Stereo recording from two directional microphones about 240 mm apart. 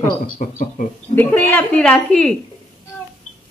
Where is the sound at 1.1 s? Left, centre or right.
Centre.